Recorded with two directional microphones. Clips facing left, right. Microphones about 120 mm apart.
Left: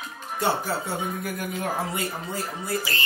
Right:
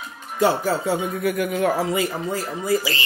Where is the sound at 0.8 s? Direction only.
70° right (ahead or behind).